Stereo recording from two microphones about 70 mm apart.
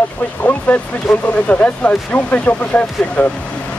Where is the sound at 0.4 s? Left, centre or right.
Left.